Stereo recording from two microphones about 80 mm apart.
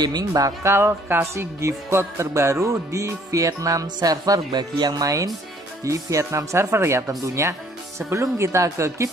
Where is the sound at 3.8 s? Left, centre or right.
Right.